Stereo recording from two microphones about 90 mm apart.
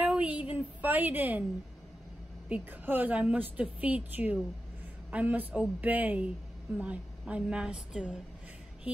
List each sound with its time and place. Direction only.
0.0 s a woman's voice: 15° right (ahead or behind)
2.5 s a woman's voice: 20° right (ahead or behind)